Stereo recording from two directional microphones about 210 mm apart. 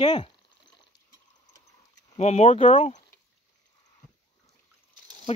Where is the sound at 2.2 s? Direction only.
30° left (ahead or behind).